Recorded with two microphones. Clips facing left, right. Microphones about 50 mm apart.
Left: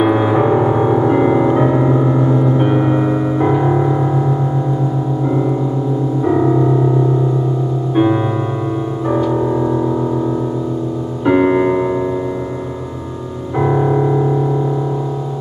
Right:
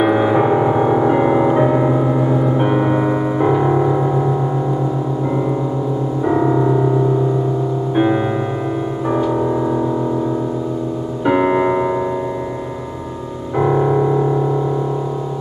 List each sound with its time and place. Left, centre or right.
0.0 s music: centre
6.2 s music: centre
7.9 s music: centre
11.2 s music: centre
13.6 s music: centre